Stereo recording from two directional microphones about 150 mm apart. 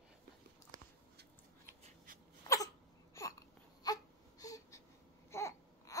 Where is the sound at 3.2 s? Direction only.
20° left (ahead or behind).